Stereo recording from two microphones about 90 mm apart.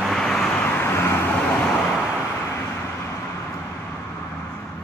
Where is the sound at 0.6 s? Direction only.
25° left (ahead or behind).